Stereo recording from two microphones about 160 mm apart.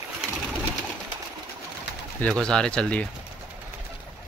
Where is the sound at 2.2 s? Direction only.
5° left (ahead or behind).